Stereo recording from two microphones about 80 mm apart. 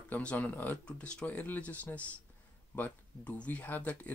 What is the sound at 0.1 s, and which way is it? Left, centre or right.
Speech, centre.